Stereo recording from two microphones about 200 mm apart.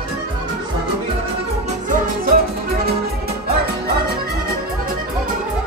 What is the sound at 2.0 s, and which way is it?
Music, 45° right (ahead or behind).